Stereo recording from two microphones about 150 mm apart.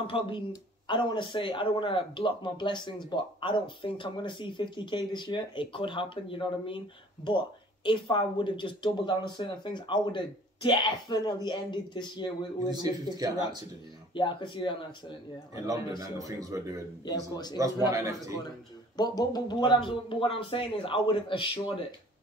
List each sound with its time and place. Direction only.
0.0 s speech: 35° left (ahead or behind)
12.6 s speech: 25° right (ahead or behind)
14.1 s speech: 30° left (ahead or behind)
15.5 s speech: 25° right (ahead or behind)
17.0 s speech: 25° left (ahead or behind)
18.9 s speech: 25° left (ahead or behind)